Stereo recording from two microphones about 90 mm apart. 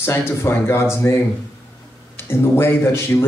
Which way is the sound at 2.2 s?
25° left (ahead or behind).